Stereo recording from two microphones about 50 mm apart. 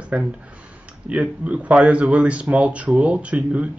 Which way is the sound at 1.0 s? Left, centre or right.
Right.